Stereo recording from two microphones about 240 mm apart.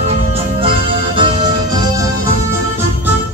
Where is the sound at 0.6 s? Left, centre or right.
Right.